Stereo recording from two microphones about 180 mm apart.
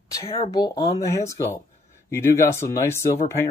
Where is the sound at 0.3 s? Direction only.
20° left (ahead or behind).